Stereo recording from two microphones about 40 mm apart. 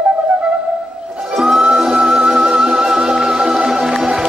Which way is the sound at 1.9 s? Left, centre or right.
Right.